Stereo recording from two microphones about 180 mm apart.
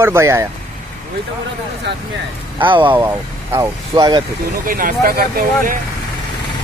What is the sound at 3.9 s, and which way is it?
Speech, 25° right (ahead or behind).